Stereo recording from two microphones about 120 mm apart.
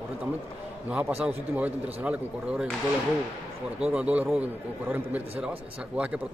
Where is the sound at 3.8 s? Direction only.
10° right (ahead or behind).